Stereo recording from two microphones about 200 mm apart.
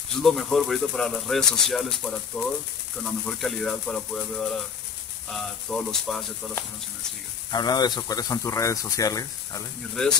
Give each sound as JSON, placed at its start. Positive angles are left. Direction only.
{"t": 0.2, "sound": "speech", "side_deg": 0}
{"t": 7.5, "sound": "speech", "side_deg": 20}